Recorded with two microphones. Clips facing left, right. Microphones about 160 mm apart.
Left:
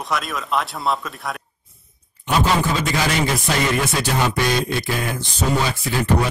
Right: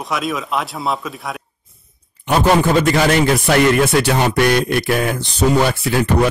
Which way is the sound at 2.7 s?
60° right (ahead or behind).